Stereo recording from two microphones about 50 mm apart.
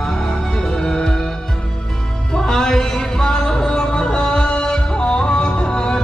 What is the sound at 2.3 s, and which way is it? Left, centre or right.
Music, centre.